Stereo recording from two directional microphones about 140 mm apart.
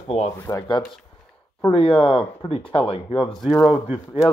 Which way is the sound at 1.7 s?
40° left (ahead or behind).